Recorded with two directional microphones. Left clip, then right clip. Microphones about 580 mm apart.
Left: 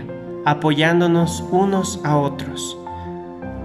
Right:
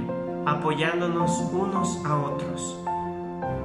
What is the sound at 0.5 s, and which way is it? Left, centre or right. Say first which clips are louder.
Speech: left 8 dB; centre.